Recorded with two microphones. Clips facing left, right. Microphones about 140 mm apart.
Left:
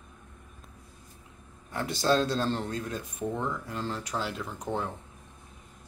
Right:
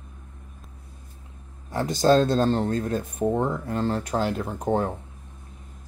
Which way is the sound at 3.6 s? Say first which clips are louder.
Right 9 dB; 50° right (ahead or behind).